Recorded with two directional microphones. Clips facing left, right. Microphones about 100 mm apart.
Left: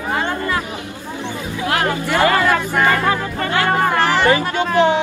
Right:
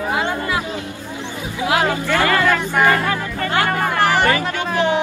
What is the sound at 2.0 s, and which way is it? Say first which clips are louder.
Speech: left 1 dB; 20° left (ahead or behind).